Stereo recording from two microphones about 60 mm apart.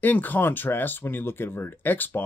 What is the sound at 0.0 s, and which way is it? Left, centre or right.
Speech, left.